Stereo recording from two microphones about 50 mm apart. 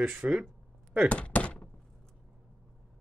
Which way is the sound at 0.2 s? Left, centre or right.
Right.